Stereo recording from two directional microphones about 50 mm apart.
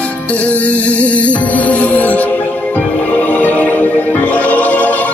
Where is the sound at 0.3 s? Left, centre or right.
Left.